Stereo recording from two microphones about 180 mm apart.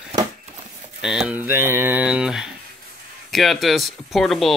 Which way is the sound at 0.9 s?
5° right (ahead or behind).